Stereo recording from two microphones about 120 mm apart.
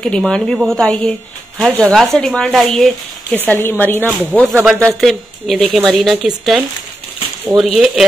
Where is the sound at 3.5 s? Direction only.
15° left (ahead or behind).